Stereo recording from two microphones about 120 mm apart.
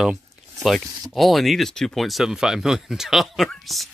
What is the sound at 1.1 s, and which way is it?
Speech, centre (ahead or behind).